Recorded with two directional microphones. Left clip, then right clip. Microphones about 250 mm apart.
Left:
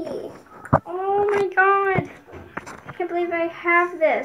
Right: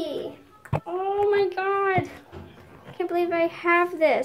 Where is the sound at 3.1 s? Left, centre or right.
Right.